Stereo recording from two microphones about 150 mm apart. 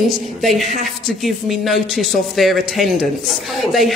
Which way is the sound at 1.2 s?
Centre (ahead or behind).